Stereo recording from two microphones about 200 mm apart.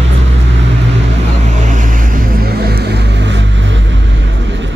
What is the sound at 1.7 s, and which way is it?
Vehicle, 40° right (ahead or behind).